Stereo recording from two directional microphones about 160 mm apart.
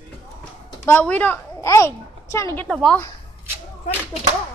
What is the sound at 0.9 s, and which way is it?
A woman's voice, 10° left (ahead or behind).